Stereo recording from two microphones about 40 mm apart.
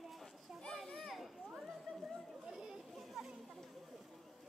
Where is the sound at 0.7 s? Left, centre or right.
Centre.